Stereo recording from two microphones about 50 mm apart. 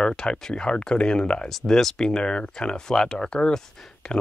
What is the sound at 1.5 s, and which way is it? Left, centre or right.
Speech, centre.